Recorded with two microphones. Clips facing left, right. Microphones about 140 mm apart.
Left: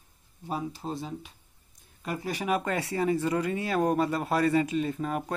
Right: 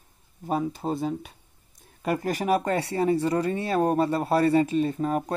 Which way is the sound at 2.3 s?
40° right (ahead or behind).